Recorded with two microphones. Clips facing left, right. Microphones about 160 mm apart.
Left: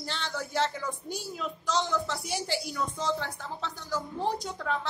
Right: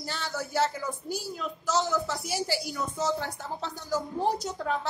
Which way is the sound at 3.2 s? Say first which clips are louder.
Right 2 dB; 40° right (ahead or behind).